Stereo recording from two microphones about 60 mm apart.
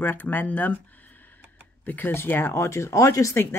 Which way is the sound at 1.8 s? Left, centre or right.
Left.